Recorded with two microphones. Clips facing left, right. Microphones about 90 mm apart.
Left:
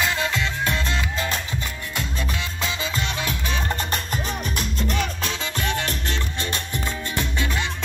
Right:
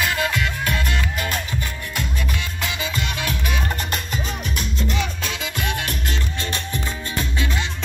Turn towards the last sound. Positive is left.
turn(degrees=-10)  # may be behind; listen again after turning